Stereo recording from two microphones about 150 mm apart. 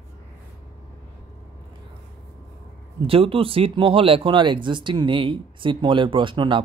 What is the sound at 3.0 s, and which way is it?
Speech, 40° right (ahead or behind).